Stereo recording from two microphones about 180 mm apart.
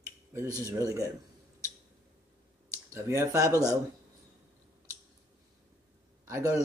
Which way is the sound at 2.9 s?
15° right (ahead or behind).